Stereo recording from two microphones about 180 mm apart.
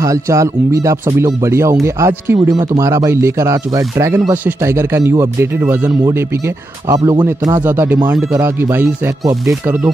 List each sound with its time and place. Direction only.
0.0 s speech: 20° right (ahead or behind)